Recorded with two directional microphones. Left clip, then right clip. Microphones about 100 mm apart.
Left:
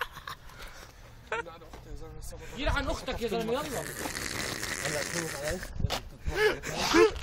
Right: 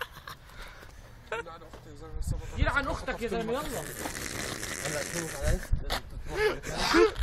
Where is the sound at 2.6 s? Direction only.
30° right (ahead or behind).